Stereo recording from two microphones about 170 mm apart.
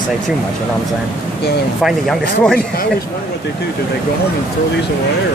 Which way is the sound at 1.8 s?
Centre (ahead or behind).